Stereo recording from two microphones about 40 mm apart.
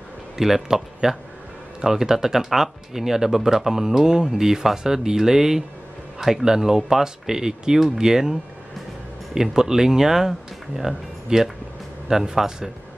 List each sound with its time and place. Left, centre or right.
0.4 s speech: centre